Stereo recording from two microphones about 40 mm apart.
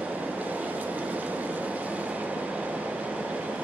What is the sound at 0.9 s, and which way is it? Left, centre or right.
Train, right.